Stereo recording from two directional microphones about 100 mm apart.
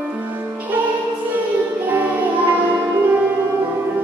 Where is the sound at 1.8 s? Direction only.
15° right (ahead or behind).